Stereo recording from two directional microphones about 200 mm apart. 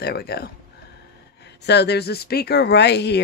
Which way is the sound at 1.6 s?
55° left (ahead or behind).